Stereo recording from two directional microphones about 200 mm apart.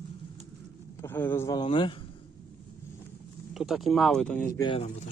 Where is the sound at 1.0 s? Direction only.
10° left (ahead or behind).